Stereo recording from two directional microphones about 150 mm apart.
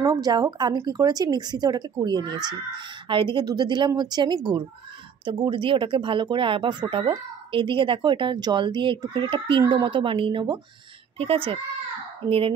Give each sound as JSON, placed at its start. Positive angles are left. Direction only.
{"t": 0.0, "sound": "speech", "side_deg": -25}